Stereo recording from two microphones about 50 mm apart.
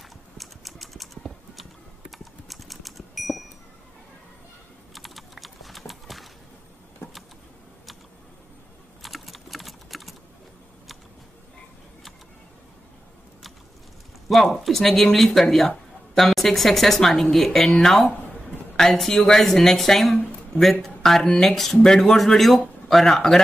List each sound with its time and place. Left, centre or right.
0.4 s typing: centre
4.9 s typing: centre
7.0 s vehicle: left
9.0 s typing: centre
14.2 s speech: centre